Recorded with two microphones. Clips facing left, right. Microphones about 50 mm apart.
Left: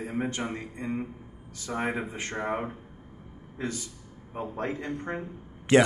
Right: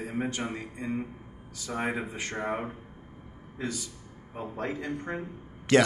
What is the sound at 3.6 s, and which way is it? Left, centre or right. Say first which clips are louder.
Speech: left 1 dB; left.